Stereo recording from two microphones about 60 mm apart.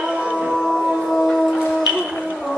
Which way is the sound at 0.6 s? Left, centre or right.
Centre.